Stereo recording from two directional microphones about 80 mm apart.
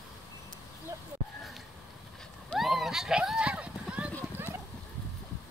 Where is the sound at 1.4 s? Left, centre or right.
Centre.